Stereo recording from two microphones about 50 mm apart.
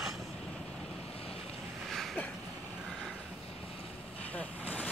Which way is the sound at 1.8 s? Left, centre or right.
Centre.